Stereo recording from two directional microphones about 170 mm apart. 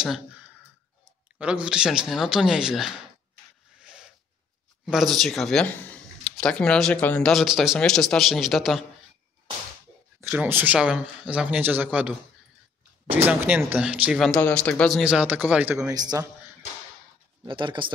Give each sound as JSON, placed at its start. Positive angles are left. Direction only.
{"t": 1.4, "sound": "speech", "side_deg": -5}
{"t": 3.8, "sound": "rub", "side_deg": -5}
{"t": 4.8, "sound": "speech", "side_deg": 0}
{"t": 10.2, "sound": "speech", "side_deg": -10}
{"t": 15.9, "sound": "speech", "side_deg": -25}
{"t": 17.5, "sound": "speech", "side_deg": -30}